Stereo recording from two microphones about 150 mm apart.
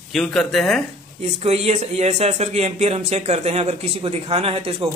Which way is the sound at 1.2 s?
45° right (ahead or behind).